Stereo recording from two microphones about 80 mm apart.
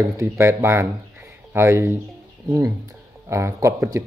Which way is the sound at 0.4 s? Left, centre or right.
Right.